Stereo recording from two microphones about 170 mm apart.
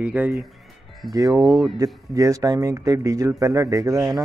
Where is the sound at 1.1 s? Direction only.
20° right (ahead or behind).